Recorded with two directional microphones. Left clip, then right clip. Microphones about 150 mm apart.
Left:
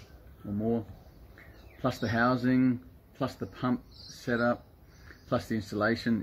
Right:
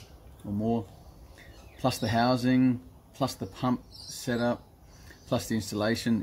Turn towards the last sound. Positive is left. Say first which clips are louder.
# even
turn(degrees=-40)  # may be behind; listen again after turning